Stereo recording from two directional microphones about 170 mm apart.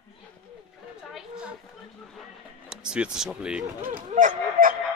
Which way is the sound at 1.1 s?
5° right (ahead or behind).